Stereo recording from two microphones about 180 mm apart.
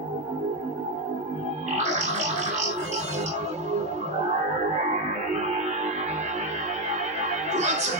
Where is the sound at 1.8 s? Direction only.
40° right (ahead or behind).